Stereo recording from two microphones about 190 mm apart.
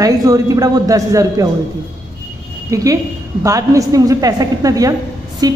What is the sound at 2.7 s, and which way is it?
A woman's voice, 20° right (ahead or behind).